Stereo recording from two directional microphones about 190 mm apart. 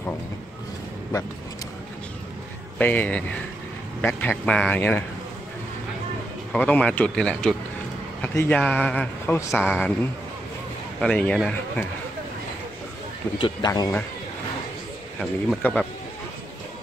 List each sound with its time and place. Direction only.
2.8 s a man's voice: 10° left (ahead or behind)
6.5 s a man's voice: 5° left (ahead or behind)
11.0 s speech: 5° left (ahead or behind)
13.4 s speech: 20° left (ahead or behind)
15.1 s speech: 5° left (ahead or behind)